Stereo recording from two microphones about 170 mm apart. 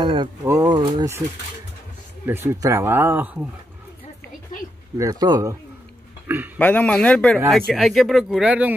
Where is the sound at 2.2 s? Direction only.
15° right (ahead or behind).